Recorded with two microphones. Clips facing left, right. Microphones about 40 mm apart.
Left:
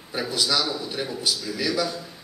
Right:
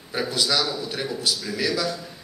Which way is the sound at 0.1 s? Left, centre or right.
Centre.